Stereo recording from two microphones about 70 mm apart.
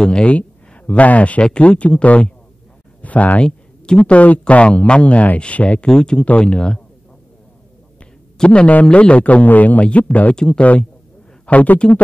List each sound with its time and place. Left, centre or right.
0.0 s speech: centre
8.0 s speech: centre